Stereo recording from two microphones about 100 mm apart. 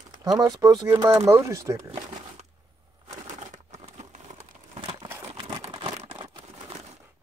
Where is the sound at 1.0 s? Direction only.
25° right (ahead or behind).